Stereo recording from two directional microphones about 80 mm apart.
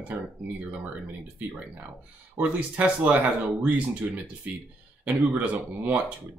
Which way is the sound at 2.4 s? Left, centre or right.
Centre.